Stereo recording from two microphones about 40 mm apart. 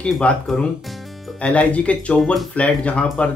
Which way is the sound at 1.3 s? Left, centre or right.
Left.